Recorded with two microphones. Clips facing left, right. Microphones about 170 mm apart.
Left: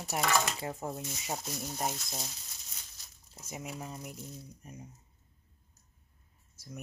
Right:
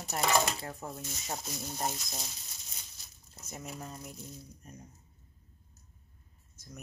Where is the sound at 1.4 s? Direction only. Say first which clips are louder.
Right 1 dB; centre (ahead or behind).